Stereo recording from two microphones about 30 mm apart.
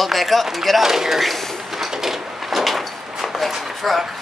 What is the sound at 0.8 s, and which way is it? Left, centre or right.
Speech, centre.